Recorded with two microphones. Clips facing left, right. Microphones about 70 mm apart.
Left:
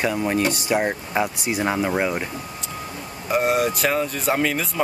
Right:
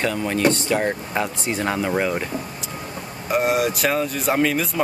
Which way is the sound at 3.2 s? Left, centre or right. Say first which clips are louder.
Even; centre.